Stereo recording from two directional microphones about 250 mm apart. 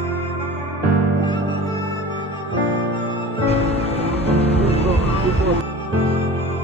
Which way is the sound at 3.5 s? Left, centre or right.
Left.